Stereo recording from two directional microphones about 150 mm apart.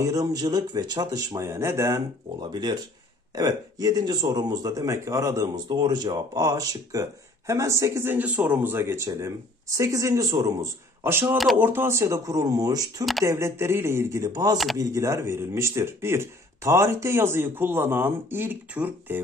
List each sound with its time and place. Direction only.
0.0 s speech: 25° right (ahead or behind)